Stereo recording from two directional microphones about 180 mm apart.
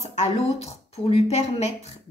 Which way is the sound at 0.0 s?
40° left (ahead or behind).